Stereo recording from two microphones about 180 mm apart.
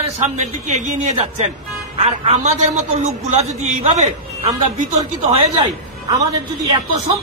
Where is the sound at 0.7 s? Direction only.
40° right (ahead or behind).